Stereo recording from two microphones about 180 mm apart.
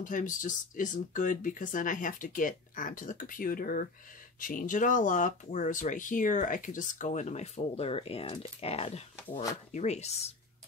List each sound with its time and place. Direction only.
0.0 s speech: 45° left (ahead or behind)